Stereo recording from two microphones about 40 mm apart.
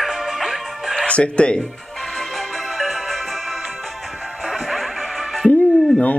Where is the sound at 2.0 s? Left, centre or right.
Centre.